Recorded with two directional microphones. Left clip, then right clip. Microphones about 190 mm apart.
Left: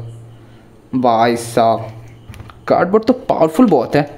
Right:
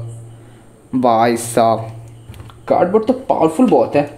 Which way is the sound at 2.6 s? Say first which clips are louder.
Even; 20° left (ahead or behind).